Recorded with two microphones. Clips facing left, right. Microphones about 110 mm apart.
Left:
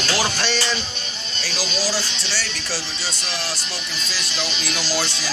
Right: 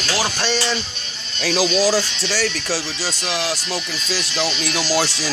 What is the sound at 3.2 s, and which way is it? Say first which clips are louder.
Speech: right 7 dB; 75° right (ahead or behind).